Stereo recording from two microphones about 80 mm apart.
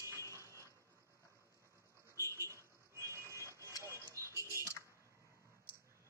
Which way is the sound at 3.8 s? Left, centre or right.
Right.